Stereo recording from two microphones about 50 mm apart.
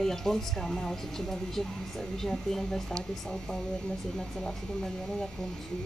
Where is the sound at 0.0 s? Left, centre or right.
Centre.